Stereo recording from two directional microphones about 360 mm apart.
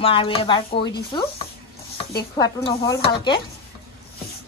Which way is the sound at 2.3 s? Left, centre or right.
Centre.